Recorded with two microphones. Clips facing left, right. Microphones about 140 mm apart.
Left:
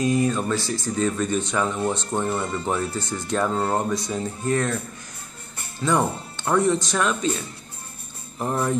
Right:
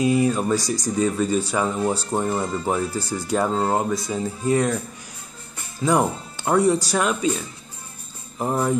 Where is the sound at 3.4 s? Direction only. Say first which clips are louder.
Even; 20° right (ahead or behind).